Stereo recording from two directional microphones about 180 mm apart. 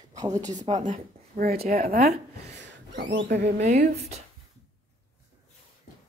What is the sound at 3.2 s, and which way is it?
Speech, 70° right (ahead or behind).